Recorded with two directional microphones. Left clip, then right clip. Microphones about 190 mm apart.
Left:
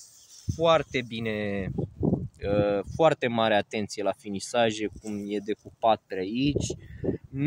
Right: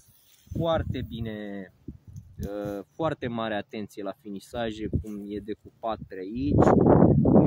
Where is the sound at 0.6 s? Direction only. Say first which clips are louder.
Left 5 dB; 30° left (ahead or behind).